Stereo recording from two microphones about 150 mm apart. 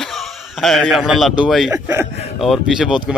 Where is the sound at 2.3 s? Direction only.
Centre (ahead or behind).